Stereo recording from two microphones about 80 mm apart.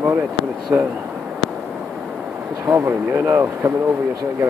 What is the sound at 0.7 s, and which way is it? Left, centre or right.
Speech, right.